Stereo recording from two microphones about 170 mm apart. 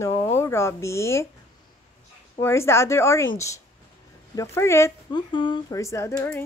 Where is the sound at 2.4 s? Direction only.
15° left (ahead or behind).